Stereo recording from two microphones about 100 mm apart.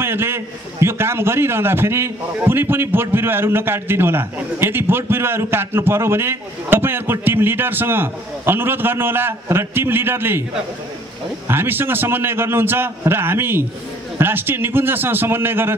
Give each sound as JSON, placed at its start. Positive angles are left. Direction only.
{"t": 0.0, "sound": "a man's voice", "side_deg": -25}
{"t": 11.4, "sound": "a man's voice", "side_deg": -20}